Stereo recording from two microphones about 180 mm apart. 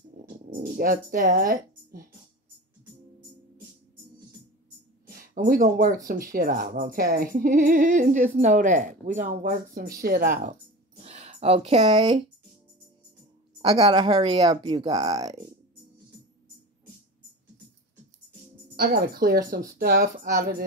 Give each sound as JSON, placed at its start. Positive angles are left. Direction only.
{"t": 0.5, "sound": "speech", "side_deg": -50}
{"t": 5.0, "sound": "a sound", "side_deg": -50}
{"t": 6.3, "sound": "speech", "side_deg": -55}
{"t": 10.0, "sound": "speech", "side_deg": -55}
{"t": 11.1, "sound": "speech", "side_deg": -35}
{"t": 13.8, "sound": "speech", "side_deg": -25}
{"t": 18.8, "sound": "speech", "side_deg": -60}